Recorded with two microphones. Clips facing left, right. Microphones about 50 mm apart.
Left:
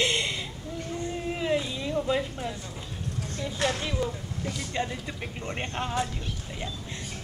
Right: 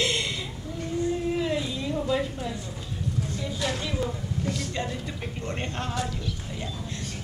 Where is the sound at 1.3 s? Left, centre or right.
Centre.